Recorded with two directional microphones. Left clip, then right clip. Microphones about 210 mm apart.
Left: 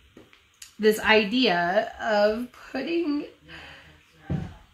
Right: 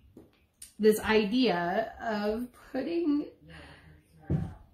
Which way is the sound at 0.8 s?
20° left (ahead or behind).